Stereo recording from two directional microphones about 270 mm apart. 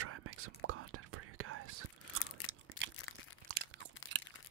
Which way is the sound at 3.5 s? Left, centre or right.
Right.